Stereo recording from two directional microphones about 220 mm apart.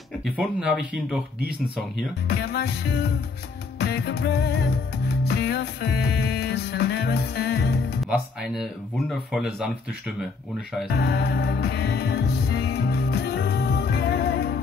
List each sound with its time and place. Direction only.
0.2 s speech: centre (ahead or behind)
2.2 s music: 45° left (ahead or behind)
8.0 s speech: centre (ahead or behind)
10.9 s music: 45° left (ahead or behind)